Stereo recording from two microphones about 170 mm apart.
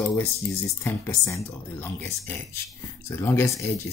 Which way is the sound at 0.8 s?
15° left (ahead or behind).